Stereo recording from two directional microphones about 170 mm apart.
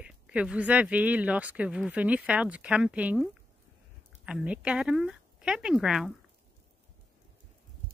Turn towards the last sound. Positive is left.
turn(degrees=-5)  # may be behind; listen again after turning